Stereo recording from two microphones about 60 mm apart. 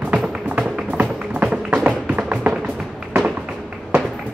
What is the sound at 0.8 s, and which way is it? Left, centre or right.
Music, right.